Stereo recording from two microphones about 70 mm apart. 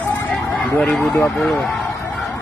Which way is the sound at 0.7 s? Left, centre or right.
Centre.